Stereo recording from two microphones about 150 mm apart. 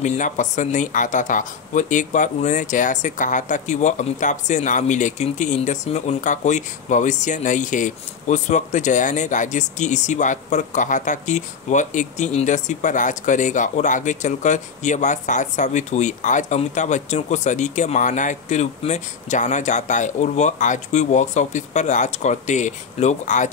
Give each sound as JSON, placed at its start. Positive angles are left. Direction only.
{"t": 0.0, "sound": "speech", "side_deg": 55}